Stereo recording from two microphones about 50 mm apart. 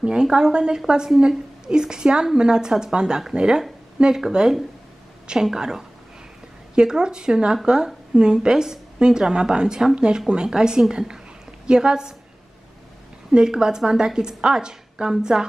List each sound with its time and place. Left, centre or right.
0.0 s speech: centre
13.3 s speech: centre